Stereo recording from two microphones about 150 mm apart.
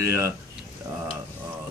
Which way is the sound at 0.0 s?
20° right (ahead or behind).